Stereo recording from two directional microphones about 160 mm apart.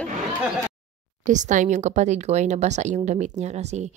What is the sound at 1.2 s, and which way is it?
A woman's voice, 50° right (ahead or behind).